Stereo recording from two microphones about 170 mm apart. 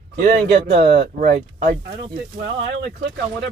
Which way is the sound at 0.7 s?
45° right (ahead or behind).